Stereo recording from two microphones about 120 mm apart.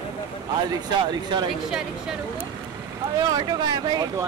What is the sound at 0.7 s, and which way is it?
Speech, 35° right (ahead or behind).